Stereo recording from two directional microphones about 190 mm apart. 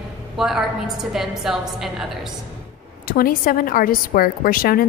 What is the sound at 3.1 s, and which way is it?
A woman's voice, 50° left (ahead or behind).